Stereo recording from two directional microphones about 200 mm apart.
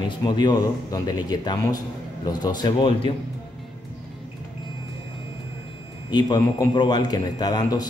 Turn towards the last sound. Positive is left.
turn(degrees=20)  # may be behind; listen again after turning